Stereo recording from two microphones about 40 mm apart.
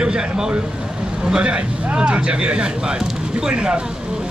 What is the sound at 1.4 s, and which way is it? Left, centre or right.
Speech, right.